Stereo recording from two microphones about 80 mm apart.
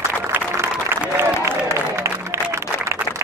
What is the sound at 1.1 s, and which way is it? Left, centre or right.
Applause, right.